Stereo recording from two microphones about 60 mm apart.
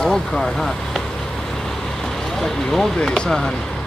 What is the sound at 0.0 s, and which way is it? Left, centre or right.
Speech, centre.